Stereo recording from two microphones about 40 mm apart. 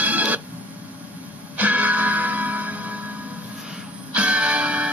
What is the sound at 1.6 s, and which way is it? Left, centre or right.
Music, right.